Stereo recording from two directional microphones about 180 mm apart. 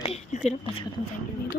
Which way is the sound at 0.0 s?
35° left (ahead or behind).